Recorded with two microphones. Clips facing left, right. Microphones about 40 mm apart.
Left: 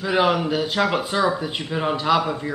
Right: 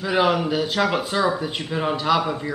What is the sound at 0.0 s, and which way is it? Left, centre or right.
A man's voice, centre.